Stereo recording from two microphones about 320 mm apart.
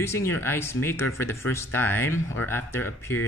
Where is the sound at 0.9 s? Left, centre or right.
Left.